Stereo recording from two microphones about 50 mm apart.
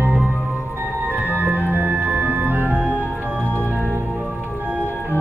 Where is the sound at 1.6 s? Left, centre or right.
Right.